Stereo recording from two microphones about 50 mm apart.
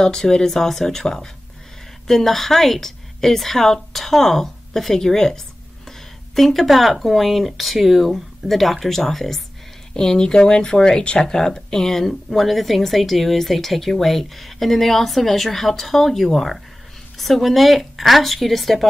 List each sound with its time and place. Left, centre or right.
0.0 s a woman's voice: centre